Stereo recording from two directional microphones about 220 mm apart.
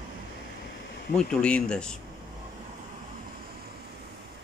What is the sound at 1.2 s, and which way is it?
Speech, 5° left (ahead or behind).